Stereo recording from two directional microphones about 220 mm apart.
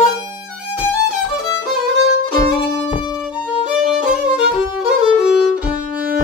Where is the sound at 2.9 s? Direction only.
25° left (ahead or behind).